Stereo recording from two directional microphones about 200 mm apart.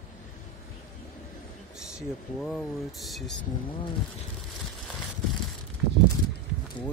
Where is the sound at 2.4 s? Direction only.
Centre (ahead or behind).